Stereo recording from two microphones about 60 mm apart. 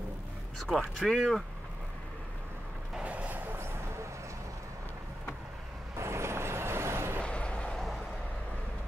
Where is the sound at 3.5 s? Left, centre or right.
Right.